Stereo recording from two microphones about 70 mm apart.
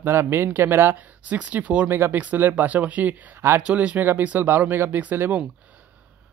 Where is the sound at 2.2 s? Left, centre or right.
Right.